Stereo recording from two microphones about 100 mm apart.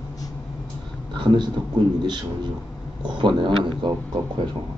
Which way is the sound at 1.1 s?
50° right (ahead or behind).